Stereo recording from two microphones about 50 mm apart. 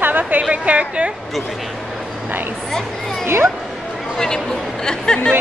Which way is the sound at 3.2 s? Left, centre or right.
Right.